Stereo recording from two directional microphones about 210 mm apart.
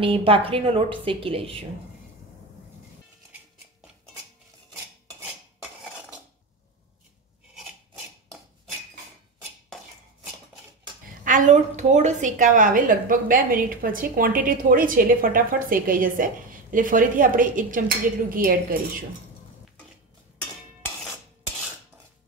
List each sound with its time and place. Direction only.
0.0 s a woman's voice: 25° right (ahead or behind)
4.7 s cutlery: 5° right (ahead or behind)
11.2 s a woman's voice: 35° right (ahead or behind)